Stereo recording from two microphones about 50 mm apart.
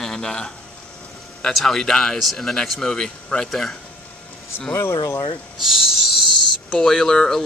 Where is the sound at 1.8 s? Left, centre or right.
Centre.